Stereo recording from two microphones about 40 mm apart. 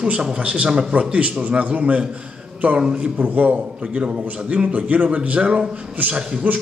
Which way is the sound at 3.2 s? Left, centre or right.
Right.